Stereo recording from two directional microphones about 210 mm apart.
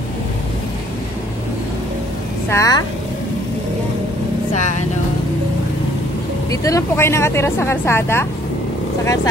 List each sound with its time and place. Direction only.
2.5 s speech: 15° left (ahead or behind)
6.5 s speech: 15° left (ahead or behind)